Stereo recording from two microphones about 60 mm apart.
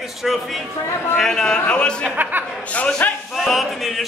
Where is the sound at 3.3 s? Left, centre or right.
Centre.